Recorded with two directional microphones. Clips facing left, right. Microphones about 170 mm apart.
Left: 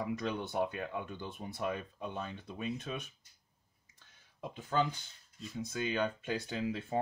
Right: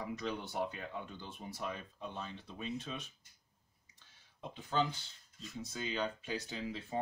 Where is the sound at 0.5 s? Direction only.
55° left (ahead or behind).